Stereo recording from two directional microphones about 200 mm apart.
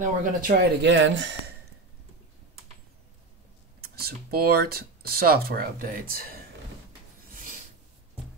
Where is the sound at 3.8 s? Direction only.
50° right (ahead or behind).